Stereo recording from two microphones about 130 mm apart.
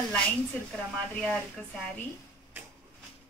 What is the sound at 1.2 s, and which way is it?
Speech, 5° left (ahead or behind).